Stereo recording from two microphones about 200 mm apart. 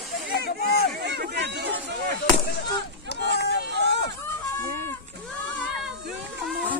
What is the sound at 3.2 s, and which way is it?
Run, 55° left (ahead or behind).